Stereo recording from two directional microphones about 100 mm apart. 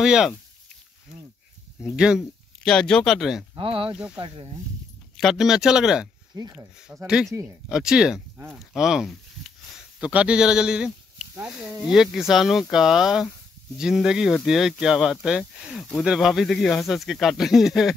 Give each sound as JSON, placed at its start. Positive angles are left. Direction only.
{"t": 0.0, "sound": "speech", "side_deg": -5}
{"t": 1.9, "sound": "speech", "side_deg": -10}
{"t": 2.6, "sound": "speech", "side_deg": 5}
{"t": 3.5, "sound": "speech", "side_deg": -65}
{"t": 3.9, "sound": "speech", "side_deg": -10}
{"t": 5.1, "sound": "speech", "side_deg": 0}
{"t": 6.3, "sound": "speech", "side_deg": -45}
{"t": 6.9, "sound": "speech", "side_deg": -25}
{"t": 7.7, "sound": "speech", "side_deg": -5}